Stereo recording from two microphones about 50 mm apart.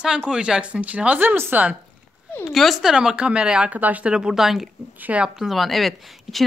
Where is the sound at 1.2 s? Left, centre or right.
Right.